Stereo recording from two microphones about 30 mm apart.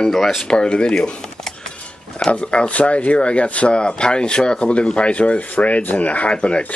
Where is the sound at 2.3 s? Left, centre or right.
Left.